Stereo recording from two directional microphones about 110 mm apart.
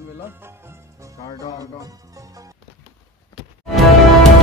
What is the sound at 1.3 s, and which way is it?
Speech, 35° left (ahead or behind).